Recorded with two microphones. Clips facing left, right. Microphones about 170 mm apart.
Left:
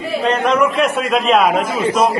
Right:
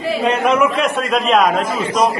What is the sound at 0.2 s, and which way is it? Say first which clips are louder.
A man's voice: even; 10° right (ahead or behind).